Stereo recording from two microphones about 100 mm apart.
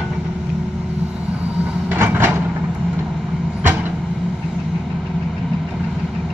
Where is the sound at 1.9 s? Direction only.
20° right (ahead or behind).